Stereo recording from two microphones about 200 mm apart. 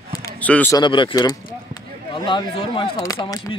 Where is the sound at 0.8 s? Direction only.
25° left (ahead or behind).